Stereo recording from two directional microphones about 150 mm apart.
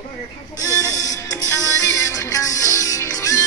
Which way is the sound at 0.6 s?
20° left (ahead or behind).